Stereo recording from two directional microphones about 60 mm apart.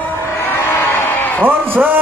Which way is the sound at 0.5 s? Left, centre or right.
Left.